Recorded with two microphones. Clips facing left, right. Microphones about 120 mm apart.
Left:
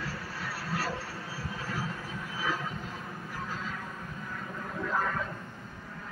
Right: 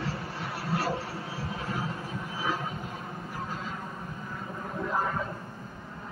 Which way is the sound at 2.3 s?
20° right (ahead or behind).